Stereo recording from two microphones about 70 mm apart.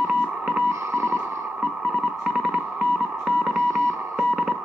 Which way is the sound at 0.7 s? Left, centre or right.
Right.